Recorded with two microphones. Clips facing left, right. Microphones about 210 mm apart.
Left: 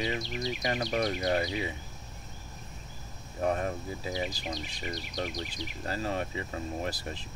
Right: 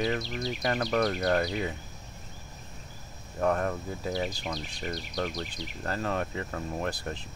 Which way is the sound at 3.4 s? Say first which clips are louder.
Right 2 dB; 60° right (ahead or behind).